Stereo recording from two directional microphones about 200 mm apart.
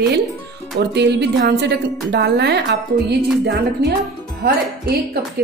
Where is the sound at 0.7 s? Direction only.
55° right (ahead or behind).